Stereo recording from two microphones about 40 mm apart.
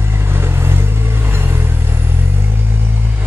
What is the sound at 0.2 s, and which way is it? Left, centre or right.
Vehicle, right.